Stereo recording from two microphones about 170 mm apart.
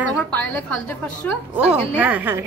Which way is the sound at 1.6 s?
10° right (ahead or behind).